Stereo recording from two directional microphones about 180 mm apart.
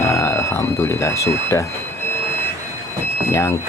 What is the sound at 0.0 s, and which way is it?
Speech, 15° left (ahead or behind).